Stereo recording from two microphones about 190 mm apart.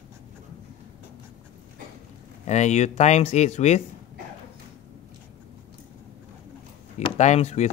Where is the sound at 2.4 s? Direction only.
35° left (ahead or behind).